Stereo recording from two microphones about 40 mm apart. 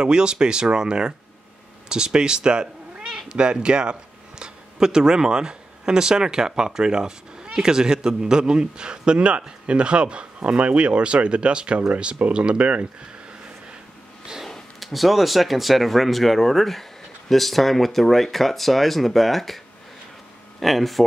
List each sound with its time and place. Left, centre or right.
0.0 s a man's voice: right
14.8 s speech: centre
20.6 s speech: centre